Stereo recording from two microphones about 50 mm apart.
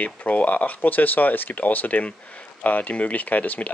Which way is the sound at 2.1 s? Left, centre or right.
Left.